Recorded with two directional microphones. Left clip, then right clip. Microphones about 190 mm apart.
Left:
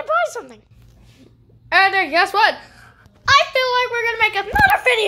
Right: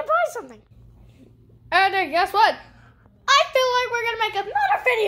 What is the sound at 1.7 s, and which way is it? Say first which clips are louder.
Speech: left 4 dB; 5° left (ahead or behind).